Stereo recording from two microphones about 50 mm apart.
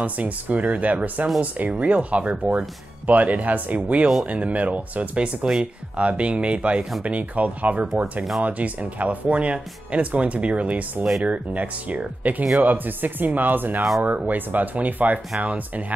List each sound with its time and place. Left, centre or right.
0.0 s speech: right